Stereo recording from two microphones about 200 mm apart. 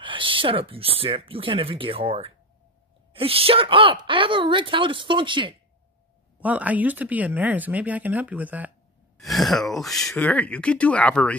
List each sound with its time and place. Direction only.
0.0 s speech: 25° right (ahead or behind)
6.4 s speech: 10° right (ahead or behind)